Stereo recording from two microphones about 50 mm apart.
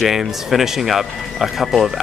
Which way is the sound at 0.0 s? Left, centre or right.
Centre.